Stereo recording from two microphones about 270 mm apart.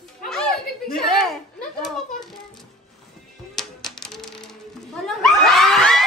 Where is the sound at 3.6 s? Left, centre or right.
Centre.